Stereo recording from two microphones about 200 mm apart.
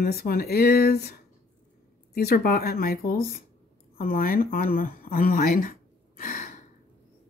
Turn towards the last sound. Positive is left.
turn(degrees=40)  # may be behind; listen again after turning